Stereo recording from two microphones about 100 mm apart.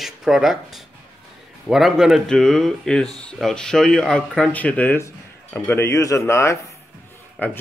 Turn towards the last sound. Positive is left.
turn(degrees=-5)  # may be behind; listen again after turning